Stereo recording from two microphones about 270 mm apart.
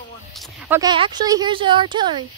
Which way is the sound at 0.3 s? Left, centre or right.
Centre.